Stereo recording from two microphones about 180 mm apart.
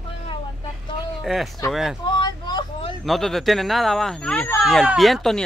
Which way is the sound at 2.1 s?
25° left (ahead or behind).